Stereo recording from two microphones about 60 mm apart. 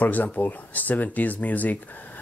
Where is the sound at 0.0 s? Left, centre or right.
Left.